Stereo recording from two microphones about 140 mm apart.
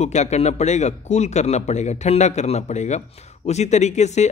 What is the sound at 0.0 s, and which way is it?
Speech, 55° left (ahead or behind).